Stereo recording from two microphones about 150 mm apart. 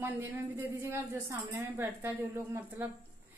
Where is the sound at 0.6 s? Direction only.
15° right (ahead or behind).